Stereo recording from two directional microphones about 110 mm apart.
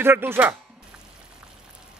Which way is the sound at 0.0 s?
20° right (ahead or behind).